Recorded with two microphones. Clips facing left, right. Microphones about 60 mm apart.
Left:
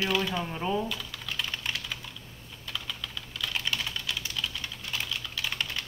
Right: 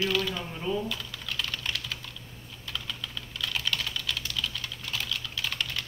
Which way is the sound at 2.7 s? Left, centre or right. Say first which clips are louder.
Even; centre.